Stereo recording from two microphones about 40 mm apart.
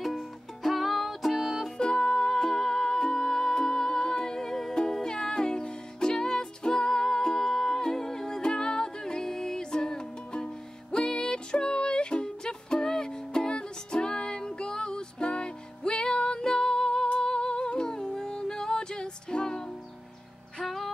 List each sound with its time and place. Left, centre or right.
0.7 s music: centre
1.8 s music: centre
20.6 s music: centre